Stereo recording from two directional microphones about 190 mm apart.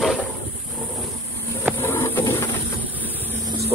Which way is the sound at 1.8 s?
10° left (ahead or behind).